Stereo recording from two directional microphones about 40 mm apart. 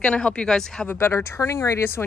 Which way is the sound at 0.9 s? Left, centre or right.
Left.